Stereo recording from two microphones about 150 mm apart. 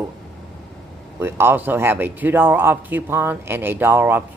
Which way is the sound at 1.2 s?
15° right (ahead or behind).